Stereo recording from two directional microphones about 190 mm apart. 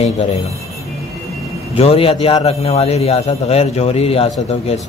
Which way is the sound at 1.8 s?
30° left (ahead or behind).